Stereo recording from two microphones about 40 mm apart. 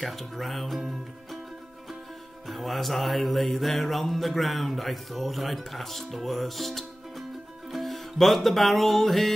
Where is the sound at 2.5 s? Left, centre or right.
Centre.